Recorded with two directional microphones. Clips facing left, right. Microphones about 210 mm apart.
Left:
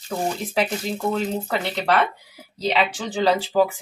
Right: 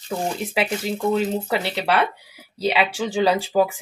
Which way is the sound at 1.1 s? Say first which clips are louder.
Right 3 dB; 5° right (ahead or behind).